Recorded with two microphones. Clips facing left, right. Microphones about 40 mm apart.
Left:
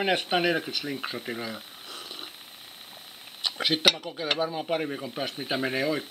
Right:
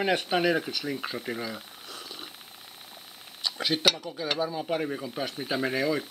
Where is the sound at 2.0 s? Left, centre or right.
Left.